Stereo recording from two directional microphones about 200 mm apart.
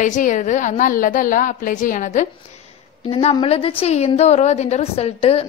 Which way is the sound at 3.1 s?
30° left (ahead or behind).